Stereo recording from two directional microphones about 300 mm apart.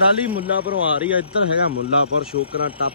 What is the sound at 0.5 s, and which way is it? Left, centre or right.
Speech, left.